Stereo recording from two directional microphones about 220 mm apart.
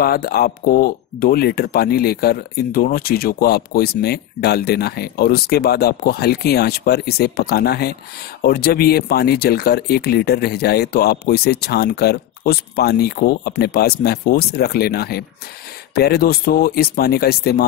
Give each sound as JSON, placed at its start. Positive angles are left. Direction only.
{"t": 0.0, "sound": "speech", "side_deg": 45}